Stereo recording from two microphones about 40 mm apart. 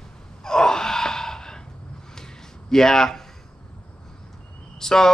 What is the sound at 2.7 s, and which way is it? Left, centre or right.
Speech, centre.